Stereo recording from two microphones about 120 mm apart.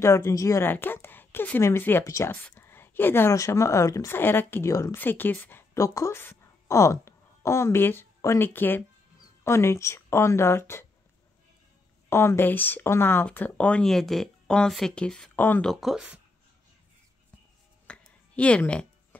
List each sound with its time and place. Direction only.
0.0 s a woman's voice: 25° left (ahead or behind)
12.1 s speech: 20° left (ahead or behind)
15.7 s speech: centre (ahead or behind)
17.8 s a sound: 10° left (ahead or behind)